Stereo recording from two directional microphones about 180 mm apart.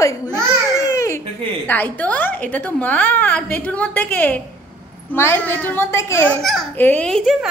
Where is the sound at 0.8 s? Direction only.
15° left (ahead or behind).